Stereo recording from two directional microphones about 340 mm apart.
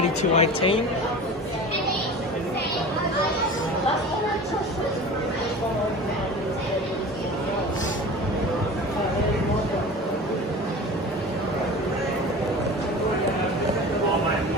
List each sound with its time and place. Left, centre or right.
0.2 s speech: centre